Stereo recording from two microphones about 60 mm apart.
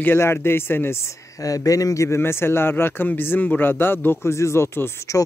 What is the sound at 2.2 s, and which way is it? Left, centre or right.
Speech, left.